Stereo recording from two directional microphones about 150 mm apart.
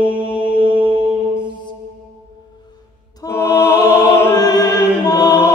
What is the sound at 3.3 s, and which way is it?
Music, 15° left (ahead or behind).